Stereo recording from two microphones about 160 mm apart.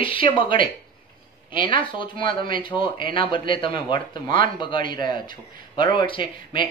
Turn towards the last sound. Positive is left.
turn(degrees=30)  # may be behind; listen again after turning